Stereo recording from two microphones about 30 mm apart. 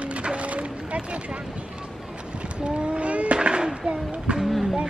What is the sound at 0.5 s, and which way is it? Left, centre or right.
Boat, right.